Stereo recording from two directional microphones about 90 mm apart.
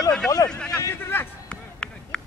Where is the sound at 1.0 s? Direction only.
25° left (ahead or behind).